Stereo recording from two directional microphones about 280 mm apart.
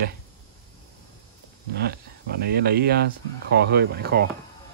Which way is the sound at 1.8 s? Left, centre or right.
Right.